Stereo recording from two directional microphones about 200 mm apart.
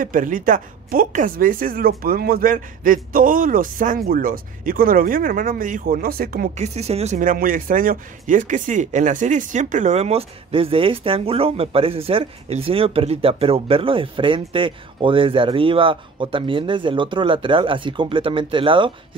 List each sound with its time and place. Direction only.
0.0 s speech: 40° right (ahead or behind); by 18.9 s 25° right (ahead or behind)